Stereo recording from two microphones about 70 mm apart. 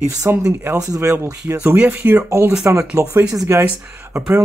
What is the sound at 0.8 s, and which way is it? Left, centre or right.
Speech, right.